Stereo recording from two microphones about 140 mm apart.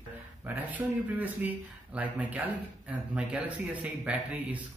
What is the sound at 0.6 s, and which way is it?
Speech, 10° right (ahead or behind).